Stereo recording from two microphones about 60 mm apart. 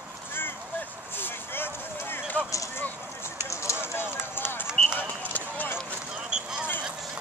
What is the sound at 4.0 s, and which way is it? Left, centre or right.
Run, left.